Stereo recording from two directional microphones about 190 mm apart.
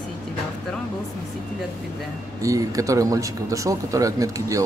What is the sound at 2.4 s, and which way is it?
Speech, 15° right (ahead or behind).